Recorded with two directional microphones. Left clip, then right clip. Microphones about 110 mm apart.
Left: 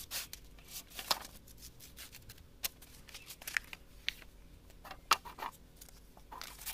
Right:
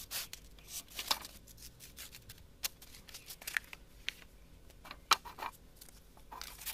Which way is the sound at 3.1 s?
15° right (ahead or behind).